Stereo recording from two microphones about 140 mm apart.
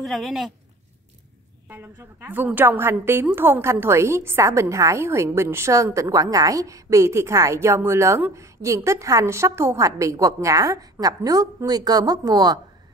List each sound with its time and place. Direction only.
0.0 s speech: centre (ahead or behind)
1.7 s a woman's voice: 15° right (ahead or behind)